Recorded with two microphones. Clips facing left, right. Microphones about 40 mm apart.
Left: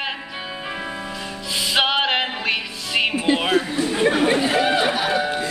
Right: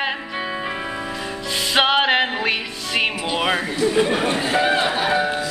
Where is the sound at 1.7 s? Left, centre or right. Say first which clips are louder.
Right 3 dB; centre.